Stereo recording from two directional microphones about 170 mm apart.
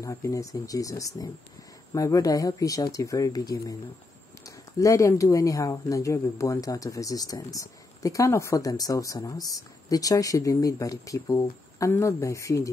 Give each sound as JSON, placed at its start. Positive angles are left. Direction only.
{"t": 0.0, "sound": "speech", "side_deg": 20}